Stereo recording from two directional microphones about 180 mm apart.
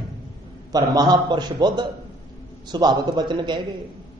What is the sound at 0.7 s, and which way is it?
A man's voice, 20° right (ahead or behind).